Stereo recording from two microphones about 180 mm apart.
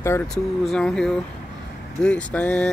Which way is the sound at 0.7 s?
5° left (ahead or behind).